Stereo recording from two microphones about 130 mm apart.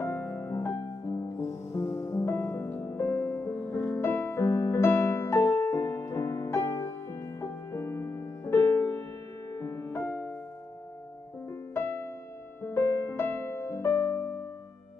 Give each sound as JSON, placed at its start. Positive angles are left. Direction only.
{"t": 0.0, "sound": "music", "side_deg": 20}
{"t": 11.4, "sound": "music", "side_deg": 20}